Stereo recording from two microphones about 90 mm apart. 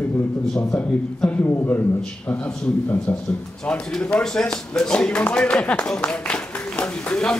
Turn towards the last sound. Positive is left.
turn(degrees=10)  # may be behind; listen again after turning